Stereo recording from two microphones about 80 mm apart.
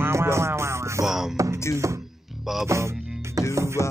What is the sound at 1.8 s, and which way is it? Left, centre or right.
Speech, right.